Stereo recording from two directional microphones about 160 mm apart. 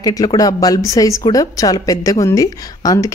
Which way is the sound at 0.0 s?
20° left (ahead or behind).